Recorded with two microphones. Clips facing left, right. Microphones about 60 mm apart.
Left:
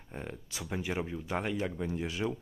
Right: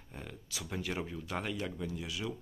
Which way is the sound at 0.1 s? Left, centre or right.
Left.